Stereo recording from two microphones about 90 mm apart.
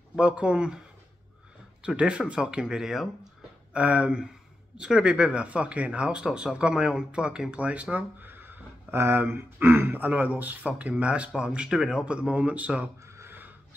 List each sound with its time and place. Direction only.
0.1 s speech: 10° right (ahead or behind)
1.8 s speech: 10° right (ahead or behind)
3.7 s speech: 15° right (ahead or behind)
13.0 s a sound: 30° right (ahead or behind)